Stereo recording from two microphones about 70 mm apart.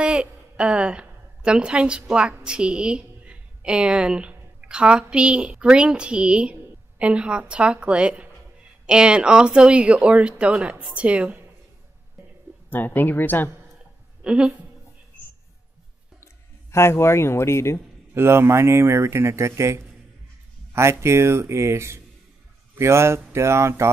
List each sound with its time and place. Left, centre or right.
0.0 s a woman's voice: centre
12.6 s speech: left
14.2 s a woman's voice: centre
16.7 s speech: left
18.1 s speech: right